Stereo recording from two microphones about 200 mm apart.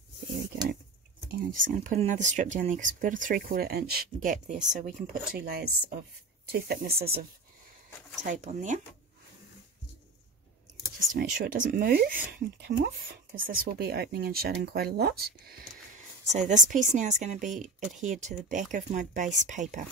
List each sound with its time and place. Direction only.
1.3 s speech: 40° right (ahead or behind)
8.2 s speech: 35° right (ahead or behind)
11.1 s speech: 45° right (ahead or behind)
16.3 s speech: 35° right (ahead or behind)